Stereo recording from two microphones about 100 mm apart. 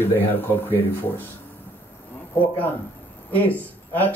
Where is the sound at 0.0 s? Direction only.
20° left (ahead or behind).